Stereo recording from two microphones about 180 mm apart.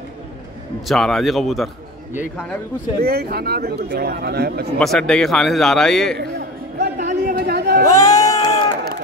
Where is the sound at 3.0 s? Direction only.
60° right (ahead or behind).